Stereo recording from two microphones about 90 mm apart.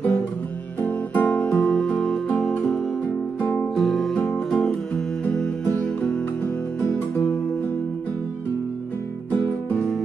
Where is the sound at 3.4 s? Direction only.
15° left (ahead or behind).